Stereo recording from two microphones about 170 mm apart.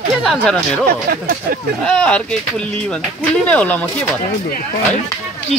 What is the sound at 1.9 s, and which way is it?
Speech, 5° left (ahead or behind).